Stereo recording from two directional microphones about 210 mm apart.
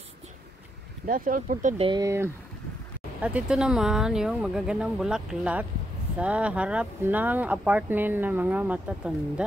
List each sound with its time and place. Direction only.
1.0 s speech: 40° right (ahead or behind)
1.9 s speech: 15° right (ahead or behind)